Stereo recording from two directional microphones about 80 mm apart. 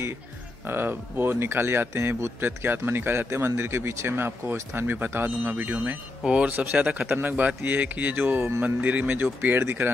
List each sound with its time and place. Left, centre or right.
0.7 s speech: right
6.2 s speech: centre